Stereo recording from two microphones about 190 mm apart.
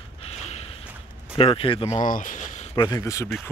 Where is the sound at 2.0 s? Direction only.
45° left (ahead or behind).